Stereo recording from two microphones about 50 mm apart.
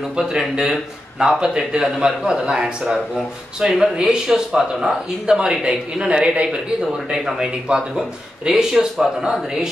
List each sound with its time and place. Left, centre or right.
0.2 s a man's voice: centre
4.5 s speech: centre
5.2 s a man's voice: centre